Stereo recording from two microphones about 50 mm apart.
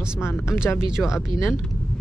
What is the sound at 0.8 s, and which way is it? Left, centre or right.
Speech, centre.